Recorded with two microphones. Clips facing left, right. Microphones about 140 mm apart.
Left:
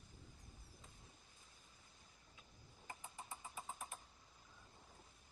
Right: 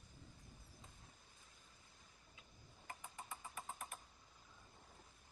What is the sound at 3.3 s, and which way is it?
Vehicle, 20° left (ahead or behind).